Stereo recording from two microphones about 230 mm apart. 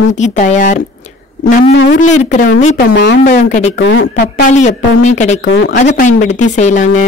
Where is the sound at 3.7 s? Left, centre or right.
Left.